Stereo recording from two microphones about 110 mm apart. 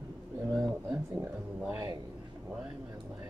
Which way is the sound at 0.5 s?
5° left (ahead or behind).